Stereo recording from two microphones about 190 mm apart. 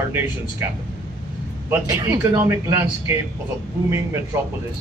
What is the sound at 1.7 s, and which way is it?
Speech, 15° right (ahead or behind).